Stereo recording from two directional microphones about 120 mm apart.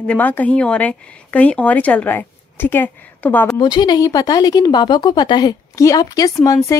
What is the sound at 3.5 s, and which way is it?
Speech, 35° left (ahead or behind).